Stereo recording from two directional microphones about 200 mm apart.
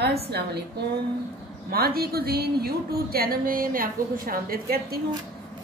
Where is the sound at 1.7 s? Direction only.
50° right (ahead or behind).